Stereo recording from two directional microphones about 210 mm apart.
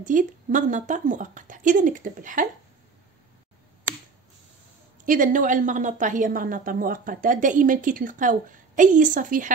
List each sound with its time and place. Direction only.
0.0 s a woman's voice: 40° right (ahead or behind)
5.0 s a woman's voice: 40° right (ahead or behind)